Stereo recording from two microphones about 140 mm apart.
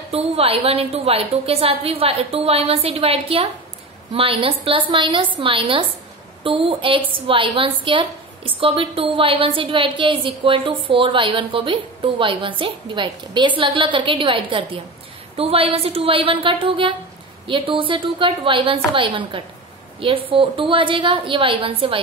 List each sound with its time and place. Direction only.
0.1 s a woman's voice: 45° right (ahead or behind)